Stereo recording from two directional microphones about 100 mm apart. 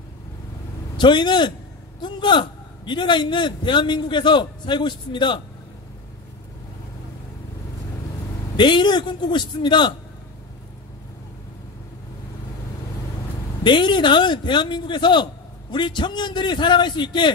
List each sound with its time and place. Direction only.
0.9 s a man's voice: 50° left (ahead or behind)
8.5 s a man's voice: 50° left (ahead or behind)
13.7 s a man's voice: 50° left (ahead or behind)